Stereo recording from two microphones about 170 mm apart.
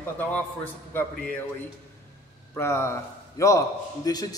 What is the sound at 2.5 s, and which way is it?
A man's voice, 15° left (ahead or behind).